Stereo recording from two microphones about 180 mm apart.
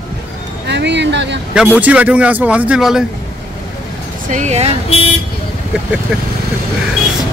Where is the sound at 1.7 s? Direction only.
10° right (ahead or behind).